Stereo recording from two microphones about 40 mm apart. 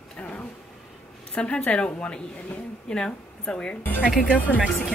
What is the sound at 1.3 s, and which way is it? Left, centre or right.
A woman's voice, left.